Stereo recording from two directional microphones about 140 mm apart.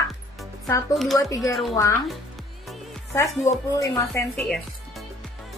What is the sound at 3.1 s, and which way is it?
A woman's voice, 20° left (ahead or behind).